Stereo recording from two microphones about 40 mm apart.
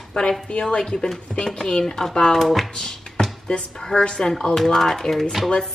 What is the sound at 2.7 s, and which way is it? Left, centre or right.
Music, centre.